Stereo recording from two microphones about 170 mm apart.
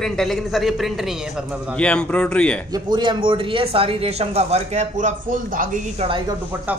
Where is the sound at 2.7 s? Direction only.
25° right (ahead or behind); by 5.7 s 55° right (ahead or behind).